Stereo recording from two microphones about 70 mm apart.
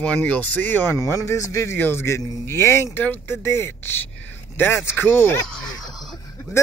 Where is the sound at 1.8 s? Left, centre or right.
Left.